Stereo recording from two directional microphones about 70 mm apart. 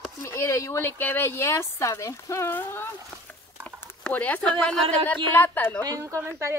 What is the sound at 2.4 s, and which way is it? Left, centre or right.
Speech, left.